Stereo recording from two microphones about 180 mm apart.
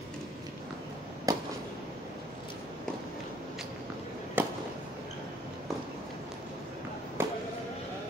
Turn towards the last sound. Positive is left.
turn(degrees=-10)  # may be behind; listen again after turning